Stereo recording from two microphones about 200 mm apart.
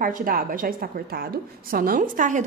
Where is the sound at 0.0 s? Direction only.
45° right (ahead or behind).